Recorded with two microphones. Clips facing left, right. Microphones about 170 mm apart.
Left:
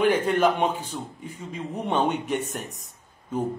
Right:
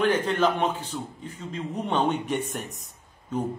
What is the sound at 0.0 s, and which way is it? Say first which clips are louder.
A man's voice: left 2 dB; 10° left (ahead or behind).